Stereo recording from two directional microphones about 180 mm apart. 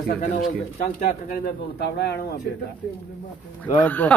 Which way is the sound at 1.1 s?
45° left (ahead or behind).